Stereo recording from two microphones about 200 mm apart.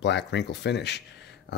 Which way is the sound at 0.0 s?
60° left (ahead or behind).